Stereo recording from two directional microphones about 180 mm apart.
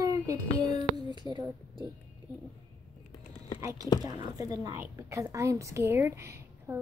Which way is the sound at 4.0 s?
20° right (ahead or behind).